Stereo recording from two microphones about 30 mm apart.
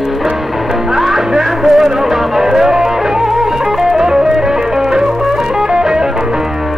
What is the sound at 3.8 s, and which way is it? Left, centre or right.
Music, centre.